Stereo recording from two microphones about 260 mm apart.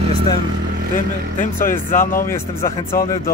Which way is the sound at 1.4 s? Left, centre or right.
Left.